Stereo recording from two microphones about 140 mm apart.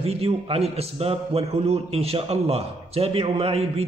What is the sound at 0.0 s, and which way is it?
A man's voice, 45° right (ahead or behind).